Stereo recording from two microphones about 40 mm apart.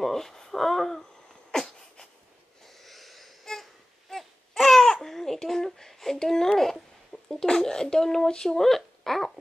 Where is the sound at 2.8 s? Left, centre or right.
Centre.